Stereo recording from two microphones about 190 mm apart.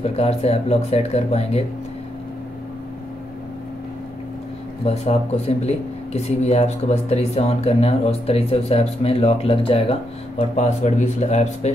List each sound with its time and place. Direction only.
0.0 s speech: 30° left (ahead or behind)
4.8 s speech: 35° left (ahead or behind)